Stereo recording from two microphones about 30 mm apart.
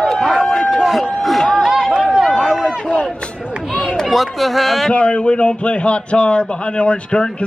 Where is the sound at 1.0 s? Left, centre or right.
Centre.